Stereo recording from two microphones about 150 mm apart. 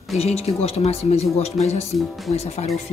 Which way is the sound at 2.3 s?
45° left (ahead or behind).